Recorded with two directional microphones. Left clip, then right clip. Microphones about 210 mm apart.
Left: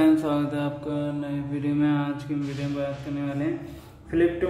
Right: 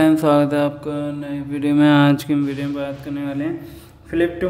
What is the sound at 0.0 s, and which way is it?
Mantra, 40° right (ahead or behind).